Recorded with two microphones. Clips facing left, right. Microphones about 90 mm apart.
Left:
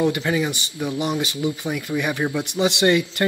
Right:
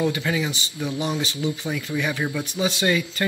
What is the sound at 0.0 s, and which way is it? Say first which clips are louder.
Speech: left 3 dB; 20° left (ahead or behind).